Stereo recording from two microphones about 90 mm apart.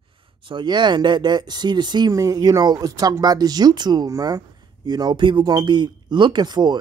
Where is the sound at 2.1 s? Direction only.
40° right (ahead or behind).